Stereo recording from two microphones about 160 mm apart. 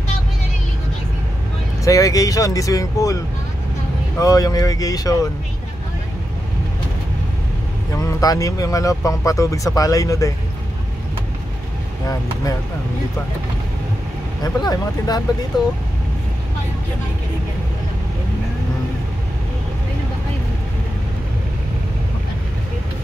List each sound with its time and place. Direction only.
1.9 s speech: 20° left (ahead or behind)
4.2 s speech: 20° left (ahead or behind)
7.9 s speech: 20° left (ahead or behind)
14.4 s speech: 25° left (ahead or behind)